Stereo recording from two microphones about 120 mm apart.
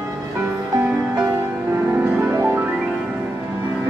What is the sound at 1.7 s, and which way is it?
Music, 15° right (ahead or behind).